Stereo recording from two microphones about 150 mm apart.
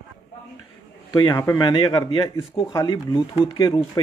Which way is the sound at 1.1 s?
30° left (ahead or behind).